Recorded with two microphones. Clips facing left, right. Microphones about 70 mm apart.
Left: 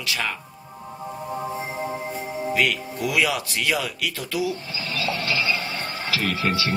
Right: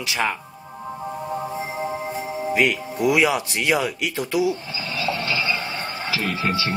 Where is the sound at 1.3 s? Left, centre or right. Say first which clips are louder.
Even; centre.